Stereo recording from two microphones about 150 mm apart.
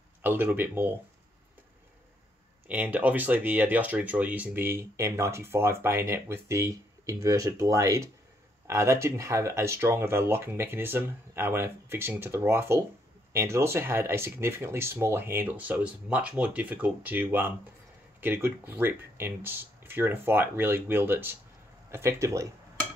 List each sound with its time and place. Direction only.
0.2 s speech: 15° right (ahead or behind)
2.7 s speech: 10° right (ahead or behind)